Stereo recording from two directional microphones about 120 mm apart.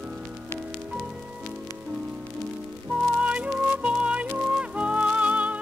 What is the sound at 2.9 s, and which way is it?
Music, 10° right (ahead or behind).